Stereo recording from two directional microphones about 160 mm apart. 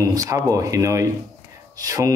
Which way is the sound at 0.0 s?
20° right (ahead or behind).